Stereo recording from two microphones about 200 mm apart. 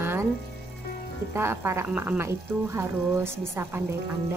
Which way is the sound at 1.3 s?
10° right (ahead or behind).